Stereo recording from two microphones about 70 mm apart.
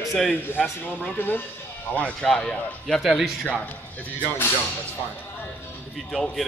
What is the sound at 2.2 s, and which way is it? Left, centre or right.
Speech, centre.